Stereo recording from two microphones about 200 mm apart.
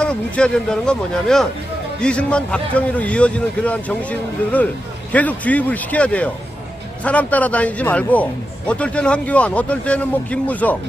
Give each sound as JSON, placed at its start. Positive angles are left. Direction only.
{"t": 0.0, "sound": "a man's voice", "side_deg": 5}